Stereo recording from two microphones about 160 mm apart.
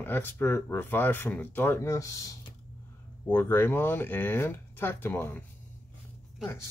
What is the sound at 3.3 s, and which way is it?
Speech, 15° left (ahead or behind).